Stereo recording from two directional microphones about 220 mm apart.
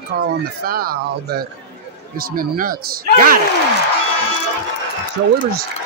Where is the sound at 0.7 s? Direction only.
45° right (ahead or behind).